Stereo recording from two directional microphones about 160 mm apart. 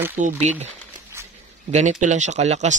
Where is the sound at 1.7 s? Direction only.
50° right (ahead or behind).